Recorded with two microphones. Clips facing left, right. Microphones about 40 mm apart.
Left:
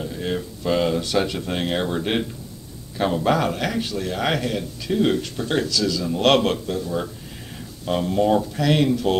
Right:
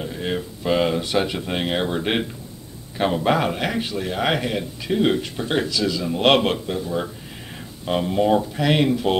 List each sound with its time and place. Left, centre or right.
0.0 s speech: centre